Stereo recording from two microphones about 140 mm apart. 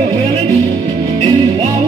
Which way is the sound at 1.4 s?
45° right (ahead or behind).